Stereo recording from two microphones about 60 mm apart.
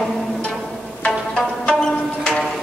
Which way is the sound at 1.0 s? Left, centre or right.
Centre.